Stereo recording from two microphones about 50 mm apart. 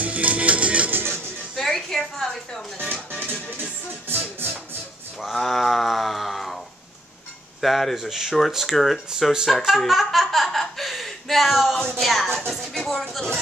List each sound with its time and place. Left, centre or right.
0.0 s music: right
0.9 s music: right
1.5 s a woman's voice: centre
2.8 s music: right
5.3 s speech: centre
7.6 s speech: centre
11.7 s speech: centre